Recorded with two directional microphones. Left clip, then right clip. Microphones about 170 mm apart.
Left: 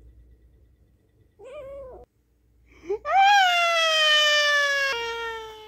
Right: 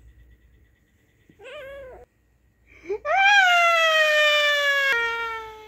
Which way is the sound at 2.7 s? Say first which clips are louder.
Left 1 dB; 40° left (ahead or behind).